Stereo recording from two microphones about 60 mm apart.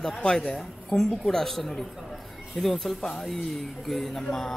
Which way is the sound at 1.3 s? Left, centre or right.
Centre.